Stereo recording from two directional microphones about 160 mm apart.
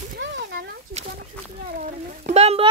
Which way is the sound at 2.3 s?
40° right (ahead or behind).